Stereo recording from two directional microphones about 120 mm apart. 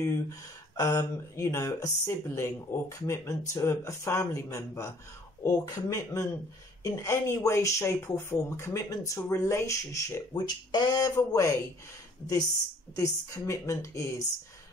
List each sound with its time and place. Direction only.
0.0 s speech: 25° left (ahead or behind)
10.4 s speech: 35° left (ahead or behind)
12.9 s speech: 25° left (ahead or behind)